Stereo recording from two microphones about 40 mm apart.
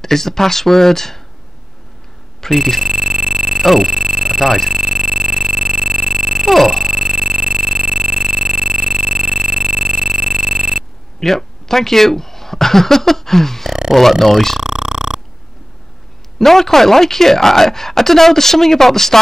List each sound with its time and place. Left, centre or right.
0.0 s speech: centre
2.4 s speech: centre
2.8 s a sound: centre
4.5 s speech: centre
4.8 s a sound: centre
6.5 s speech: centre
6.8 s a sound: centre
11.1 s speech: centre
13.7 s speech: centre
14.2 s speech: centre
14.6 s a sound: centre
16.3 s speech: centre